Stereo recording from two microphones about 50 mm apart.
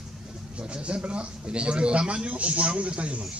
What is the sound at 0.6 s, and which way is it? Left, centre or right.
Speech, right.